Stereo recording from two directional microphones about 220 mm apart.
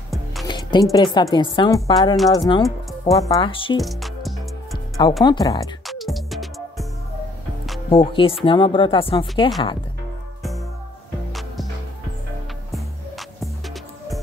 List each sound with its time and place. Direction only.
0.1 s music: centre (ahead or behind)
0.5 s music: 20° left (ahead or behind)
0.9 s speech: 20° left (ahead or behind)
3.8 s music: centre (ahead or behind)
5.2 s speech: 20° left (ahead or behind)
5.9 s music: centre (ahead or behind)
7.9 s speech: 25° left (ahead or behind)